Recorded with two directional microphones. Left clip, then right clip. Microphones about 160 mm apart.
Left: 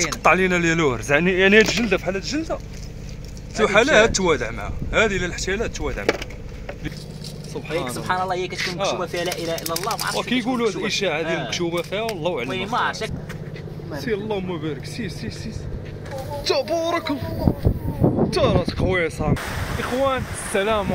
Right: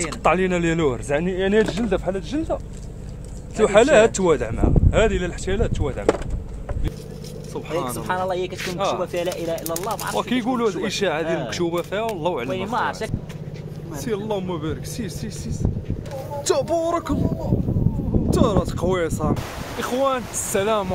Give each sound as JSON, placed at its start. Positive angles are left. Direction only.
{"t": 0.0, "sound": "speech", "side_deg": -10}
{"t": 1.1, "sound": "speech", "side_deg": 10}
{"t": 1.9, "sound": "speech", "side_deg": -5}
{"t": 3.6, "sound": "speech", "side_deg": -30}
{"t": 7.5, "sound": "speech", "side_deg": -10}
{"t": 12.4, "sound": "speech", "side_deg": -40}
{"t": 16.4, "sound": "speech", "side_deg": -25}
{"t": 18.4, "sound": "speech", "side_deg": -15}